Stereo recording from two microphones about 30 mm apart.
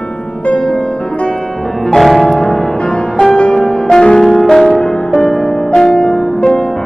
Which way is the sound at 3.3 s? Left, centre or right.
Left.